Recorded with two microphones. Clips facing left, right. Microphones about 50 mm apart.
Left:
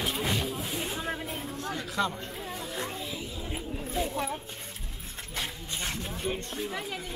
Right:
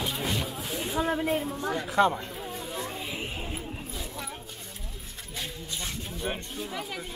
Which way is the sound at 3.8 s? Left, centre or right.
Left.